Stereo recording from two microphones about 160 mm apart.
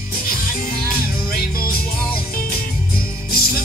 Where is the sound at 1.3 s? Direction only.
65° left (ahead or behind).